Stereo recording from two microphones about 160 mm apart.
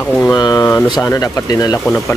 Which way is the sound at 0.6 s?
15° left (ahead or behind).